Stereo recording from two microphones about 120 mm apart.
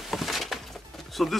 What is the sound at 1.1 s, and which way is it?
Pigeon, centre (ahead or behind).